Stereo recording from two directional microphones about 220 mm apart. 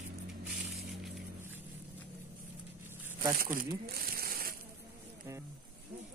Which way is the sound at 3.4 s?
40° right (ahead or behind).